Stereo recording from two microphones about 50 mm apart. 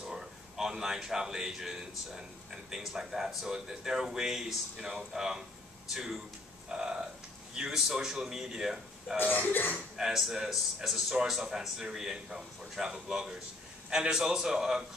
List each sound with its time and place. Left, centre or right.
0.1 s a man's voice: centre
9.2 s speech: left
9.9 s a man's voice: centre